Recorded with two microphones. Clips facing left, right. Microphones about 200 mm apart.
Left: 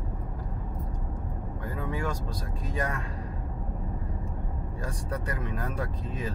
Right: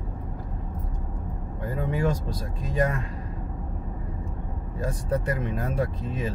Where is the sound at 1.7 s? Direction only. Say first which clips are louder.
Right 6 dB; 25° right (ahead or behind).